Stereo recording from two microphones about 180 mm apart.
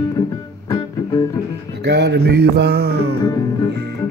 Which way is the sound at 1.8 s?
70° right (ahead or behind).